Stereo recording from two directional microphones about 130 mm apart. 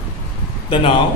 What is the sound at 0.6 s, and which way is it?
Speech, 45° left (ahead or behind).